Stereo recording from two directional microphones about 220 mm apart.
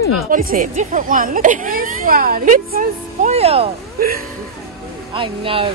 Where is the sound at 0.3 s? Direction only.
40° right (ahead or behind).